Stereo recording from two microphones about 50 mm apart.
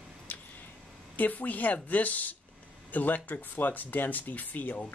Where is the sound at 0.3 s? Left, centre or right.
Left.